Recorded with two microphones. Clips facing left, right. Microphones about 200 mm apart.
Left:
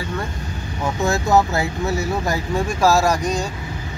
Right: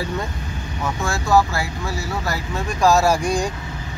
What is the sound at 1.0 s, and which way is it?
Speech, 20° left (ahead or behind).